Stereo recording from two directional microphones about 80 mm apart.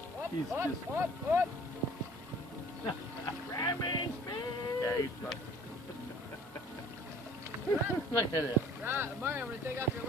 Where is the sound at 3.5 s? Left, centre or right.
Left.